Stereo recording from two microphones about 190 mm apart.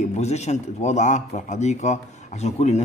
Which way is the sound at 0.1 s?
35° left (ahead or behind).